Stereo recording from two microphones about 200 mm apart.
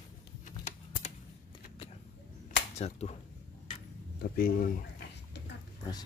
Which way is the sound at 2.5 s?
35° left (ahead or behind).